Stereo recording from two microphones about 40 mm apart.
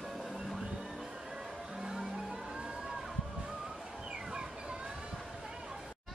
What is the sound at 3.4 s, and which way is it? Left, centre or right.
Music, centre.